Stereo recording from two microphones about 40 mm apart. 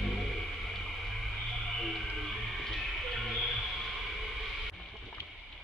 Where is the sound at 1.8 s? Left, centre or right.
Centre.